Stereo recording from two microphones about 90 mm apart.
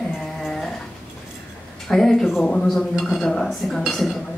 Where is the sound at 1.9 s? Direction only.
5° left (ahead or behind).